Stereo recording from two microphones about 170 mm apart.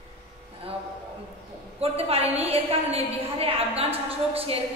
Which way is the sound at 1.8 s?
35° right (ahead or behind).